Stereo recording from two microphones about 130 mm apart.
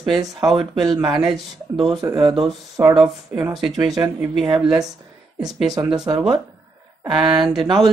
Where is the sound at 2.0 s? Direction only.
25° right (ahead or behind).